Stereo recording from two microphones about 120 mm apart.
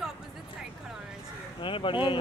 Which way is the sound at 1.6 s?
45° left (ahead or behind).